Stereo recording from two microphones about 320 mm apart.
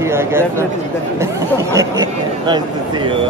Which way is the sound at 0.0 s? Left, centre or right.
Centre.